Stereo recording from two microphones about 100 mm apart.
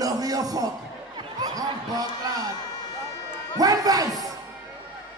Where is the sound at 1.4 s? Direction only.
40° right (ahead or behind).